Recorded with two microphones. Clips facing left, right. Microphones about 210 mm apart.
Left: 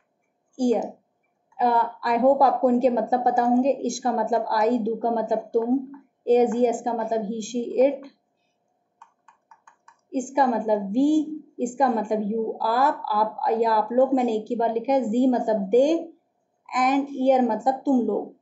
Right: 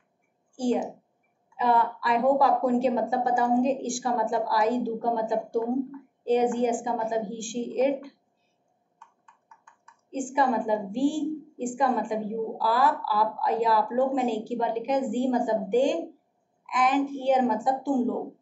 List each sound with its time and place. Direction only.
1.6 s a woman's voice: 40° left (ahead or behind)
10.1 s speech: 40° left (ahead or behind)